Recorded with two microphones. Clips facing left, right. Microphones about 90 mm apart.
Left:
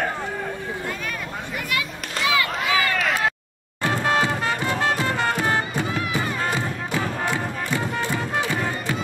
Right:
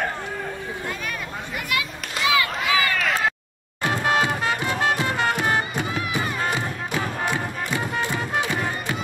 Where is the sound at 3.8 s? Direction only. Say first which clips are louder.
Even; 20° right (ahead or behind).